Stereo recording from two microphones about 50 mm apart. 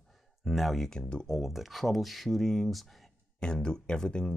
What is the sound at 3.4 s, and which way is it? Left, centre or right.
Speech, centre.